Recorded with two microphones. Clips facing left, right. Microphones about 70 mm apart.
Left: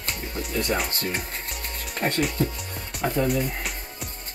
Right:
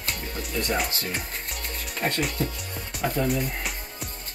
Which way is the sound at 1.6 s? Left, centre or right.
Left.